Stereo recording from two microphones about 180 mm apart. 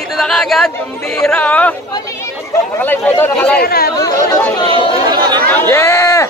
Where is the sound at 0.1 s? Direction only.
Centre (ahead or behind).